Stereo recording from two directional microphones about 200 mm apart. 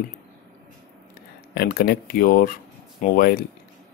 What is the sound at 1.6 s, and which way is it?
Speech, 50° left (ahead or behind).